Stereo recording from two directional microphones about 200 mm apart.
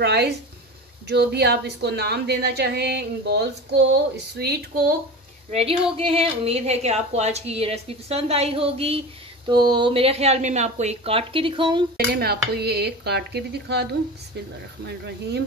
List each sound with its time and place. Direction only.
0.0 s a woman's voice: 55° right (ahead or behind)
5.5 s a woman's voice: 30° right (ahead or behind)
12.1 s a woman's voice: 50° right (ahead or behind)